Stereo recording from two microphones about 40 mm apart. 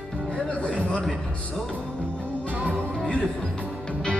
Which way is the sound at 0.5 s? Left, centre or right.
Left.